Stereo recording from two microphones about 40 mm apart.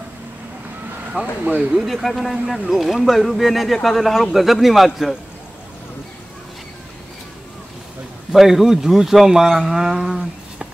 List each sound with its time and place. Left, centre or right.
1.4 s speech: right
1.9 s a man's voice: centre
8.3 s speech: centre